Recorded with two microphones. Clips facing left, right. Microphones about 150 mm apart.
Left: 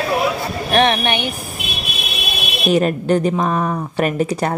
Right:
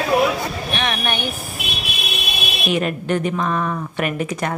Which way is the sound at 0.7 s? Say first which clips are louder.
Left 12 dB; 35° left (ahead or behind).